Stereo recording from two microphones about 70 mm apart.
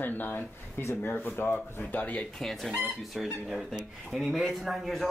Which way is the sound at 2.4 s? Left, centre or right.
Centre.